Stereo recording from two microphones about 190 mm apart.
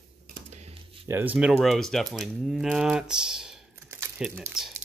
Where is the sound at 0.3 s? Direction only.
35° right (ahead or behind).